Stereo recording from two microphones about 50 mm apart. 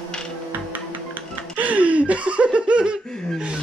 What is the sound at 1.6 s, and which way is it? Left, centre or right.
Laughter, right.